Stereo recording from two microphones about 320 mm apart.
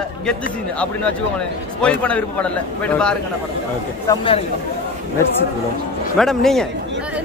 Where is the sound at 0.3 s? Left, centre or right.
Centre.